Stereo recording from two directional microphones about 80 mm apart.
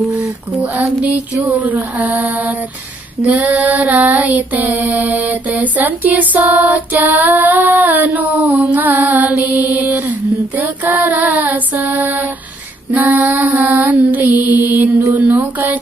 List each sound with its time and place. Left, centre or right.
0.7 s child singing: centre